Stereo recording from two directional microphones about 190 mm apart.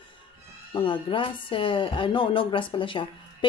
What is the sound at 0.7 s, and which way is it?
A woman's voice, 25° left (ahead or behind).